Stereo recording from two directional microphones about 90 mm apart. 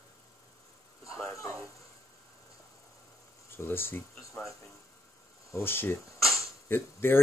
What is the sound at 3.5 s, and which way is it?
Speech, 25° left (ahead or behind).